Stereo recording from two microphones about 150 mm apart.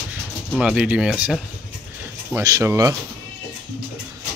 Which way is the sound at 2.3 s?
20° right (ahead or behind).